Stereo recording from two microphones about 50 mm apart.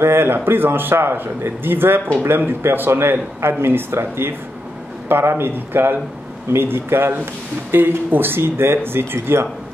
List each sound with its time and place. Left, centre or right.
0.0 s speech: right